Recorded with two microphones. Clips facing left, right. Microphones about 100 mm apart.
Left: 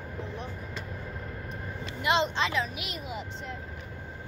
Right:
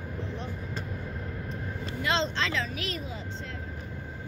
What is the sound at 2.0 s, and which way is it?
Speech, 15° left (ahead or behind).